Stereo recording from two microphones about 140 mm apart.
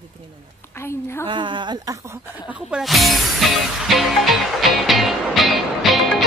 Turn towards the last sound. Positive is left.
turn(degrees=0)  # may be behind; listen again after turning